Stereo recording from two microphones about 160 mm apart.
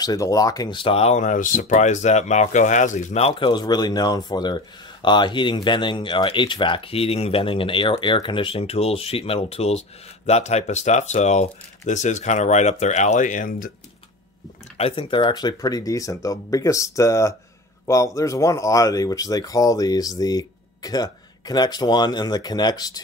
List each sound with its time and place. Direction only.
0.0 s speech: 25° left (ahead or behind); by 13.7 s 60° left (ahead or behind)
14.8 s speech: 35° left (ahead or behind)